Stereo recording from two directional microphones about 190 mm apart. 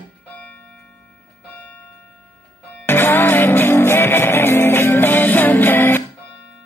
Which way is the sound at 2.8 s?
10° left (ahead or behind).